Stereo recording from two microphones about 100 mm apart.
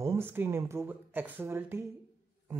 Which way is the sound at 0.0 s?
25° right (ahead or behind).